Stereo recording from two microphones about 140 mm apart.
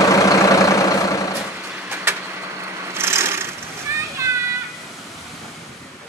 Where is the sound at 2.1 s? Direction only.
15° right (ahead or behind).